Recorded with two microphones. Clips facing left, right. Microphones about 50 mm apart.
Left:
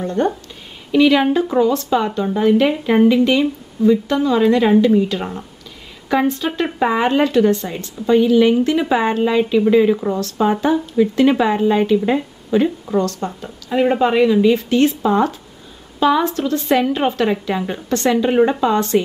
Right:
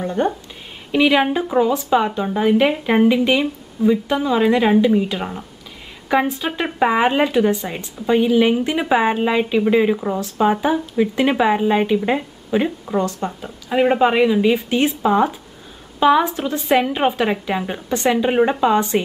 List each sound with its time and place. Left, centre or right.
0.0 s speech: centre